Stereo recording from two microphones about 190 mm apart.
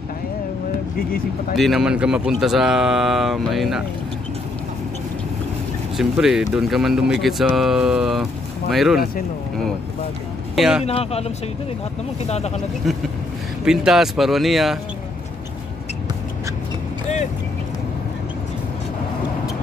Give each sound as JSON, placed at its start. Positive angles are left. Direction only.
{"t": 1.6, "sound": "speech", "side_deg": 0}
{"t": 5.9, "sound": "speech", "side_deg": 0}
{"t": 10.5, "sound": "speech", "side_deg": 0}
{"t": 10.8, "sound": "speech", "side_deg": 30}
{"t": 12.9, "sound": "speech", "side_deg": 0}